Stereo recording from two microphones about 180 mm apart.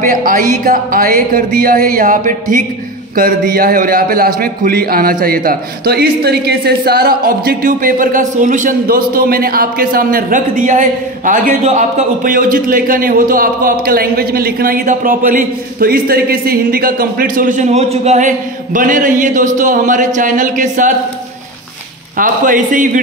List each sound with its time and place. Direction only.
0.0 s a man's voice: 50° right (ahead or behind)
22.1 s a man's voice: 50° right (ahead or behind)